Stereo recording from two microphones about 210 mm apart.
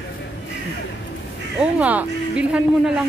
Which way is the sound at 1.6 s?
5° right (ahead or behind).